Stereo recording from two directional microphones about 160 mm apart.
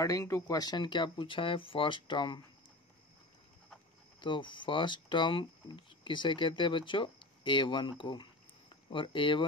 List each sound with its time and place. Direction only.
0.0 s speech: 20° left (ahead or behind)
4.2 s speech: 30° left (ahead or behind)